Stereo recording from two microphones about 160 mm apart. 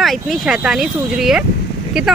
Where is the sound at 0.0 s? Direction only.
Centre (ahead or behind).